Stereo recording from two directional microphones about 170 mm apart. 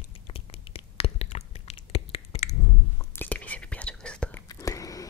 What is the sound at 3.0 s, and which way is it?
Whispering, 10° left (ahead or behind).